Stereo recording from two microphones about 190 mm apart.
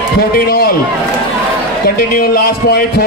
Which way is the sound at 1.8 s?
55° left (ahead or behind).